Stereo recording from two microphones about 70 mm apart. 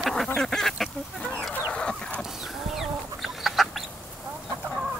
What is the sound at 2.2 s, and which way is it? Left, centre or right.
Chicken, centre.